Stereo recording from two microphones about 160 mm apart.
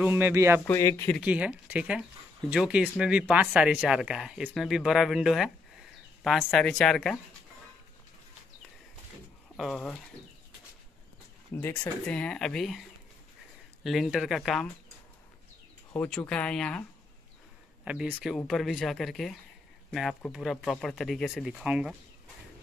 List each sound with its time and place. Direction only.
0.0 s speech: 10° right (ahead or behind)
0.7 s speech: 20° left (ahead or behind)
1.2 s speech: 10° right (ahead or behind)
9.6 s speech: centre (ahead or behind)
11.5 s speech: 10° left (ahead or behind)
13.8 s speech: centre (ahead or behind)
15.9 s speech: 10° left (ahead or behind)
17.8 s speech: 5° right (ahead or behind)